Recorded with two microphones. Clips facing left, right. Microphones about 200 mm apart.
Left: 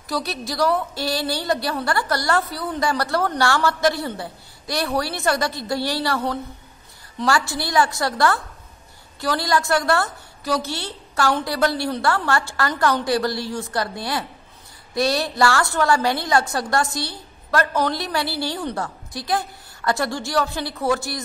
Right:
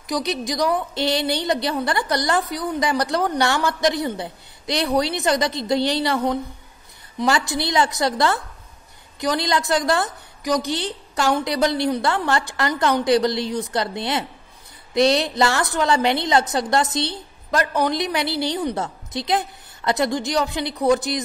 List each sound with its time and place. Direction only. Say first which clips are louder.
0.0 s a woman's voice: right 3 dB; 15° right (ahead or behind)